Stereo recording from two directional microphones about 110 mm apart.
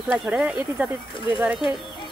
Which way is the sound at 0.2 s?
10° right (ahead or behind).